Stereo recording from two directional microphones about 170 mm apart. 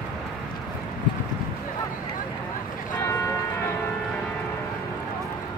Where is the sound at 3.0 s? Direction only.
15° left (ahead or behind).